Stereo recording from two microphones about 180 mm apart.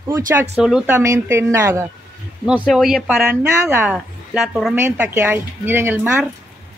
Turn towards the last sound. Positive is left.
turn(degrees=-10)  # may be behind; listen again after turning